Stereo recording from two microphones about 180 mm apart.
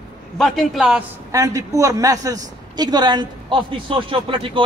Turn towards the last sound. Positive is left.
turn(degrees=-30)  # may be behind; listen again after turning